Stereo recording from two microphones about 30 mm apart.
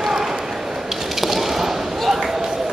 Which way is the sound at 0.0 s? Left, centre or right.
Centre.